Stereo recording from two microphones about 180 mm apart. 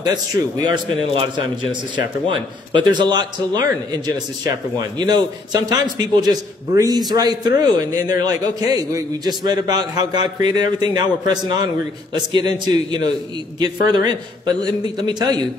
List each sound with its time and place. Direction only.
0.0 s a man's voice: 25° right (ahead or behind)